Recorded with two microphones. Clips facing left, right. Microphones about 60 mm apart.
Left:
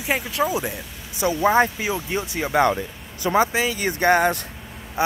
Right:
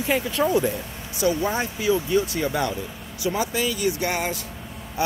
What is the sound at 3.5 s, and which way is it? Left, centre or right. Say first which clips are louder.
Speech: left 2 dB; left.